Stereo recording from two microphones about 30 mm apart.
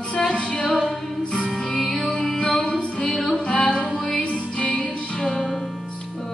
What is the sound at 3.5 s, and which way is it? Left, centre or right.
Music, left.